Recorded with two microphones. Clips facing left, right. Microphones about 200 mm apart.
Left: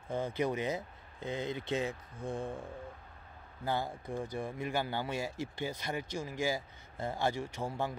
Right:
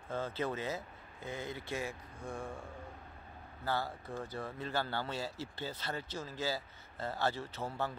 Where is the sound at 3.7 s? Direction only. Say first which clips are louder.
Left 2 dB; 15° left (ahead or behind).